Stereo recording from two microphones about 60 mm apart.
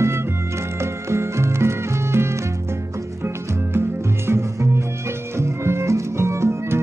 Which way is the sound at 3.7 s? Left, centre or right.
Right.